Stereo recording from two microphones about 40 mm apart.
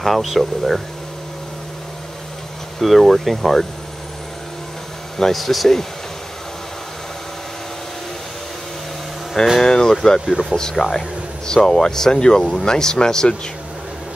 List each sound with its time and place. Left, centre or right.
0.0 s speech: centre
2.8 s speech: centre
5.2 s speech: centre
9.6 s speech: centre